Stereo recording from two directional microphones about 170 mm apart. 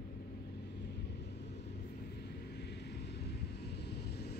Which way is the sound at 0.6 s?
80° left.